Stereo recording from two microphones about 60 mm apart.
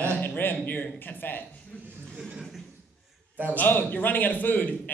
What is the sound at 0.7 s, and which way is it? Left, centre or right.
Speech, left.